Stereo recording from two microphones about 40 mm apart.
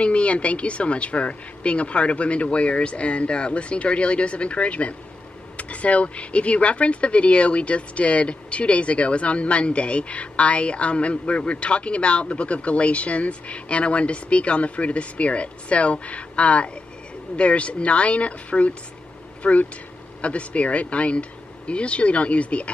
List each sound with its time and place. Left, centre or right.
0.0 s speech: left